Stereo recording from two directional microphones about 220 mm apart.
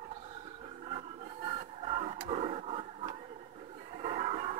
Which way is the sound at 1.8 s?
25° right (ahead or behind).